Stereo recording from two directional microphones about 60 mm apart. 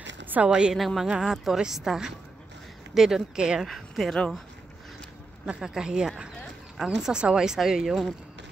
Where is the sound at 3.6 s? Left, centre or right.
Centre.